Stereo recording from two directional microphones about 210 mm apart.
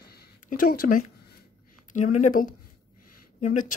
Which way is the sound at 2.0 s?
90° left.